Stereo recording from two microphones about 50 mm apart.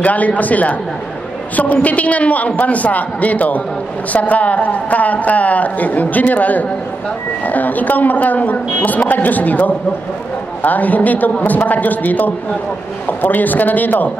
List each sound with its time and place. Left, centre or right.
0.0 s a woman's voice: left